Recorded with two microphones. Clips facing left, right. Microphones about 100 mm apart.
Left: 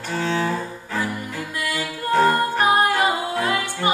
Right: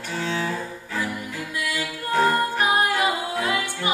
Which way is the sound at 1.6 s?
55° left (ahead or behind).